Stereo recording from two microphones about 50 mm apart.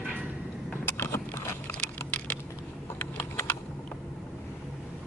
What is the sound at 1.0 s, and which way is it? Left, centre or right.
Vehicle, left.